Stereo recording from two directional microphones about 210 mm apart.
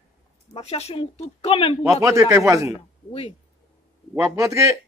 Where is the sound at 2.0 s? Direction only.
15° right (ahead or behind).